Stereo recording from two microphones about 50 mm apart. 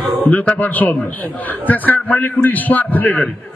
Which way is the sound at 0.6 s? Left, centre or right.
Left.